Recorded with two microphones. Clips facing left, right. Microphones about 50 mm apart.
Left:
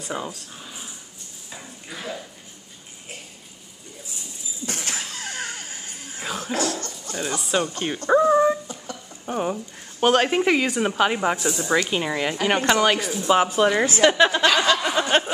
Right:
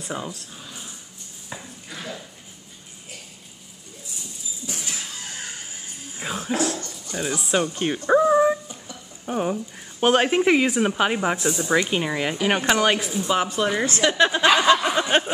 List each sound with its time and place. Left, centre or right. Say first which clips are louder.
0.0 s speech: left 1 dB; centre
0.6 s dog: left 1 dB; centre
1.9 s a sound: left 2 dB; centre
4.6 s a sound: left 3 dB; left
6.1 s dog: right 1 dB; centre
7.1 s speech: right 1 dB; centre
8.1 s dog: even; centre
9.2 s speech: right 1 dB; centre
13.3 s a woman's voice: left 5 dB; centre
14.3 s speech: right 2 dB; centre
14.8 s a sound: even; centre